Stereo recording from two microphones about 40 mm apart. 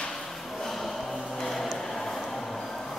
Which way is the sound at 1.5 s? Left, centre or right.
Centre.